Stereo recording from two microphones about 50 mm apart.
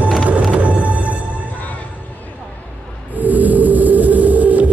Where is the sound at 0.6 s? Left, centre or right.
Right.